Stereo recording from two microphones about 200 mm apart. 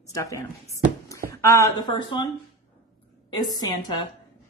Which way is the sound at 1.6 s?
20° left (ahead or behind).